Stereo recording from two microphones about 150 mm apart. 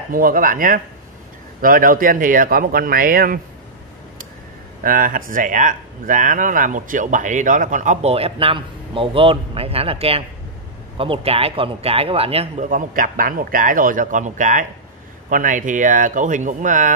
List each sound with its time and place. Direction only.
0.1 s speech: 70° right (ahead or behind)
4.8 s speech: 70° right (ahead or behind); by 12.6 s 40° right (ahead or behind)
12.6 s speech: 65° right (ahead or behind)